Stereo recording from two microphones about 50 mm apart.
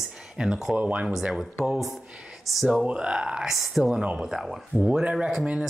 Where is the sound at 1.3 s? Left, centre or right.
Centre.